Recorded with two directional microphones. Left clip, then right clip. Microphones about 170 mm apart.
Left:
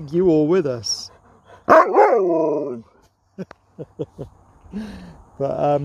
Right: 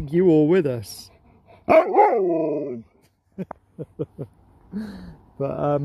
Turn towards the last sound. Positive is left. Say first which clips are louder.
# left 4 dB
turn(degrees=5)  # may be behind; listen again after turning